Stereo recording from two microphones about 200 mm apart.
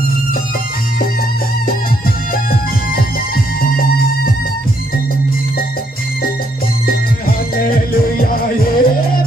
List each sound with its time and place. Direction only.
2.3 s bagpipes: 45° left (ahead or behind)
3.6 s music: 45° left (ahead or behind)
6.9 s music: 50° left (ahead or behind)